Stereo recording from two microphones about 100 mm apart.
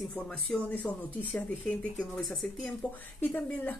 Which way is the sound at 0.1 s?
15° left (ahead or behind).